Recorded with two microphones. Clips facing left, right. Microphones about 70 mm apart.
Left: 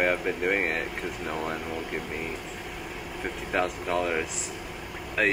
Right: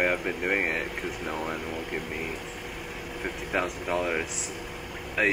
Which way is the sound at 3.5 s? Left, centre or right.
Centre.